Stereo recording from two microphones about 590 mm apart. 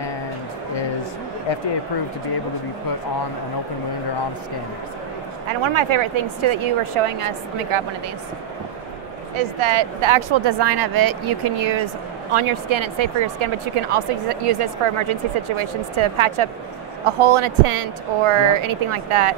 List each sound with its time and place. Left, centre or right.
5.5 s speech: right
9.6 s speech: right
12.3 s speech: right